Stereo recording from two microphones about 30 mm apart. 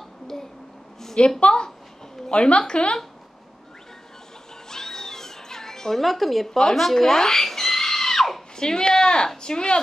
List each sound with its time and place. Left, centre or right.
1.2 s speech: left
2.3 s speech: left
4.6 s cat: centre
6.7 s speech: centre
7.2 s screaming: centre
8.5 s speech: left